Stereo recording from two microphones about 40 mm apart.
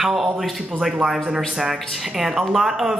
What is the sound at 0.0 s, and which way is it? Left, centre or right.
Speech, centre.